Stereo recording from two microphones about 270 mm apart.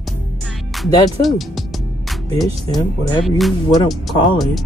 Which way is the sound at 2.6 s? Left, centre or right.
Centre.